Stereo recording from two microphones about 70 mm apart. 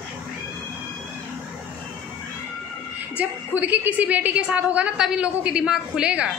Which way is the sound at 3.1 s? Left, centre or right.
Right.